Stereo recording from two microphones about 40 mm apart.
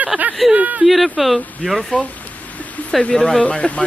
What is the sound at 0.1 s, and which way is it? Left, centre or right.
Speech, centre.